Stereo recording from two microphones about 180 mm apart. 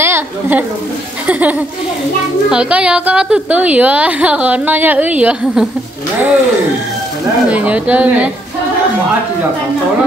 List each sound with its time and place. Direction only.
0.0 s a sound: 10° right (ahead or behind)
1.2 s a woman's voice: 10° right (ahead or behind)
7.4 s a woman's voice: 5° right (ahead or behind)